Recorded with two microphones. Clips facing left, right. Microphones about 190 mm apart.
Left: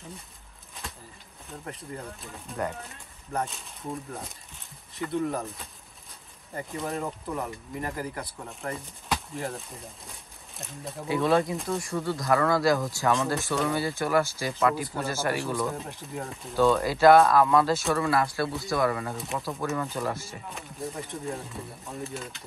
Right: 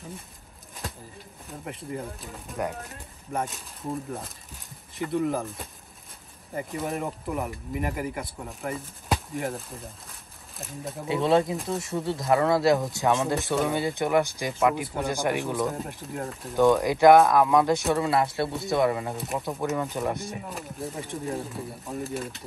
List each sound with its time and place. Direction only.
1.8 s speech: centre (ahead or behind)
4.9 s speech: centre (ahead or behind)
6.9 s speech: 15° right (ahead or behind)
7.3 s speech: 5° right (ahead or behind)
11.1 s speech: 25° right (ahead or behind)
11.5 s speech: centre (ahead or behind)
11.8 s speech: 25° right (ahead or behind)
15.7 s speech: centre (ahead or behind)
16.5 s speech: 15° right (ahead or behind)
20.2 s speech: centre (ahead or behind)